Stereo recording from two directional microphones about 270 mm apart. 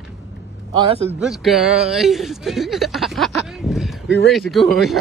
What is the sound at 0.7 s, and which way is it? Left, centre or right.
Speech, right.